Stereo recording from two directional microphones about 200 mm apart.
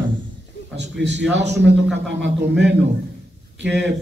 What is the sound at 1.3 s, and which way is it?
Speech, 60° right (ahead or behind).